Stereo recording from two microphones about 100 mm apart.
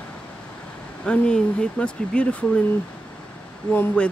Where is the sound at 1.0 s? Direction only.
10° left (ahead or behind).